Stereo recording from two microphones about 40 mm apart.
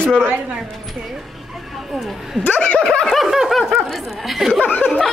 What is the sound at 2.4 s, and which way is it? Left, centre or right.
Speech, left.